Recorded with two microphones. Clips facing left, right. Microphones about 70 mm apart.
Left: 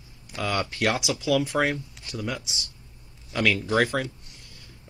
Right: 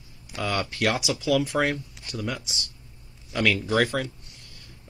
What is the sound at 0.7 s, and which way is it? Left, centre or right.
Speech, centre.